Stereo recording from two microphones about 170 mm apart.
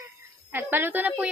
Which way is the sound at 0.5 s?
10° right (ahead or behind).